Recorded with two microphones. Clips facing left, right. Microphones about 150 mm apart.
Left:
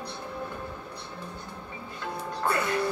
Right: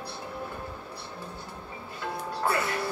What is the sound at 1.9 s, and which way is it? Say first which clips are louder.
Music: right 1 dB; 5° right (ahead or behind).